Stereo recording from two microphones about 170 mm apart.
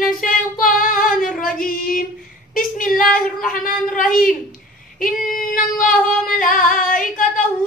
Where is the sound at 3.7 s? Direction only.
Centre (ahead or behind).